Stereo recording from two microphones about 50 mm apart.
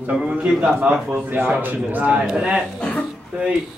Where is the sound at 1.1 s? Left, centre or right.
Right.